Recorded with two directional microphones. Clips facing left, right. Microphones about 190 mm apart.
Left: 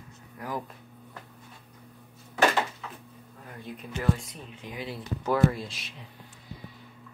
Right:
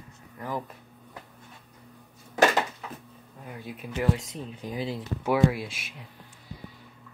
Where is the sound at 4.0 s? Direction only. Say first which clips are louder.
Right 2 dB; 20° right (ahead or behind).